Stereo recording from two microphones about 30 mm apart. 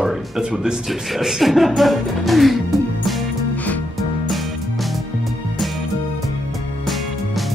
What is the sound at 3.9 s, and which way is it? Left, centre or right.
Music, centre.